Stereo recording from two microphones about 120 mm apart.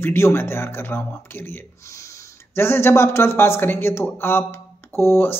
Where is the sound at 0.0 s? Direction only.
20° left (ahead or behind).